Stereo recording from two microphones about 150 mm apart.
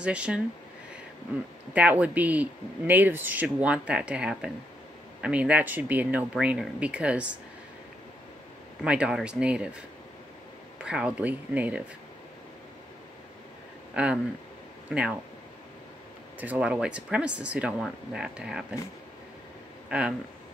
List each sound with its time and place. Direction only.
0.0 s speech: 10° right (ahead or behind)
1.7 s speech: 10° right (ahead or behind)
8.8 s speech: 5° right (ahead or behind)
10.8 s speech: 5° right (ahead or behind)
14.0 s speech: 10° right (ahead or behind)
16.3 s speech: 10° right (ahead or behind)
19.9 s speech: 10° right (ahead or behind)